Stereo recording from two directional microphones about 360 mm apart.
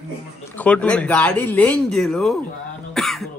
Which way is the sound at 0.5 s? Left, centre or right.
Centre.